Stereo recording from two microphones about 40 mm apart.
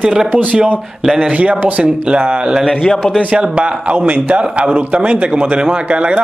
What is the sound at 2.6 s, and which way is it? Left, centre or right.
Speech, centre.